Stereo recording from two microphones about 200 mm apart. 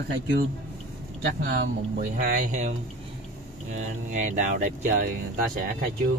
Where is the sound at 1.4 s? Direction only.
50° right (ahead or behind).